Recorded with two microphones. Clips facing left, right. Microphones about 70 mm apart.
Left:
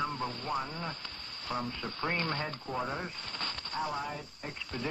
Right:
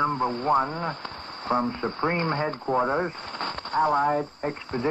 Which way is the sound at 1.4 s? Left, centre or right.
Right.